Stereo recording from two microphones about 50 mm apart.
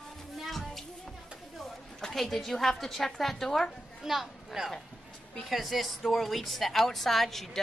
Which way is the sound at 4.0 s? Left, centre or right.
Centre.